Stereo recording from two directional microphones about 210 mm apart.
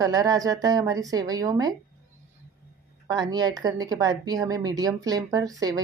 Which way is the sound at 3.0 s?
20° right (ahead or behind).